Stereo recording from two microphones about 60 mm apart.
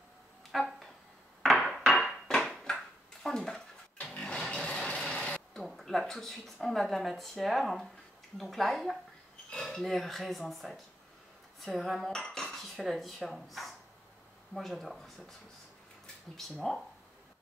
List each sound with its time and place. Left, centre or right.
0.5 s a sound: centre
4.0 s music: centre
5.6 s speech: centre